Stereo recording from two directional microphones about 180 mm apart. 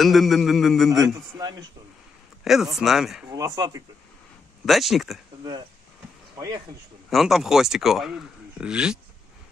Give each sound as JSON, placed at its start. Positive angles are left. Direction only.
{"t": 0.0, "sound": "speech", "side_deg": 0}
{"t": 0.9, "sound": "a man's voice", "side_deg": -20}
{"t": 2.4, "sound": "speech", "side_deg": 0}
{"t": 3.3, "sound": "a man's voice", "side_deg": -20}
{"t": 4.6, "sound": "speech", "side_deg": 0}
{"t": 7.1, "sound": "speech", "side_deg": 0}